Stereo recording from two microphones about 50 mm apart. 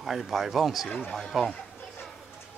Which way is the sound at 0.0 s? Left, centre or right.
Centre.